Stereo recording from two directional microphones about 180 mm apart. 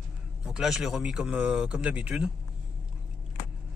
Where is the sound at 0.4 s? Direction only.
5° right (ahead or behind).